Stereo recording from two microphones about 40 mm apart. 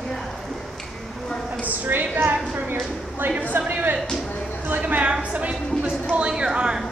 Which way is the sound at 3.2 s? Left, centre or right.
Right.